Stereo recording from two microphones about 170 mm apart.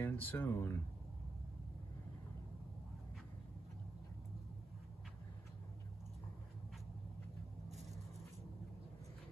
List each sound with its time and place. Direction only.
0.0 s speech: 10° left (ahead or behind)